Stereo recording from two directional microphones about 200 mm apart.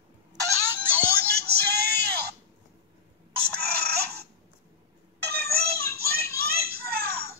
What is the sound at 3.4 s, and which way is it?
Chicken, 50° right (ahead or behind).